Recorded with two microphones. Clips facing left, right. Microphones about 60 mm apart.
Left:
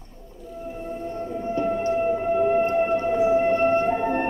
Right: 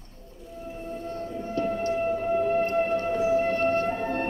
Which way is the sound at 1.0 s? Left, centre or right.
Left.